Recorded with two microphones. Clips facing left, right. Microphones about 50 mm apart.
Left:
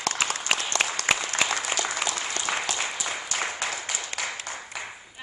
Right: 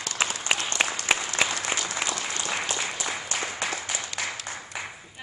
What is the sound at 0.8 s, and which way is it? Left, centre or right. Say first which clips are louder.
Applause: right 1 dB; centre.